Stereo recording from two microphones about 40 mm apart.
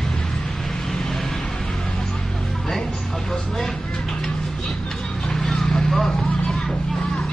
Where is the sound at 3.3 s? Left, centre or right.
Centre.